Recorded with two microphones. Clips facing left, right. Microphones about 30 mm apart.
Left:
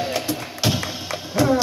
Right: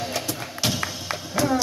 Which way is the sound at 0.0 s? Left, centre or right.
Centre.